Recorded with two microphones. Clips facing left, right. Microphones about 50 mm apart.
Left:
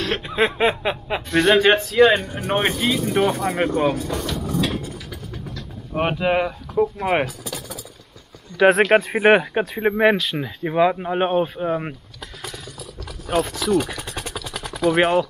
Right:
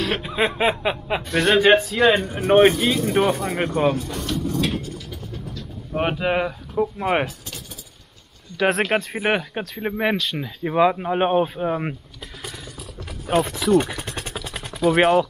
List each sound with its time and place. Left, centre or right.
0.0 s speech: centre
4.2 s vehicle: centre
5.9 s speech: centre
8.5 s speech: centre
9.2 s speech: centre
12.2 s mechanisms: centre
13.0 s a sound: right
13.7 s speech: centre
14.0 s vehicle: right
14.9 s speech: centre